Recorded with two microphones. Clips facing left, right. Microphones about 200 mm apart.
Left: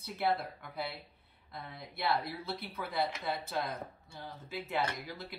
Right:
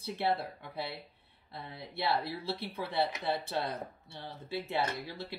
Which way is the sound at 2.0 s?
30° right (ahead or behind).